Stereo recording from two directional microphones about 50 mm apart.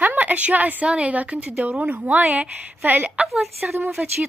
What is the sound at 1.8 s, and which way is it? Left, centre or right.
Speech, right.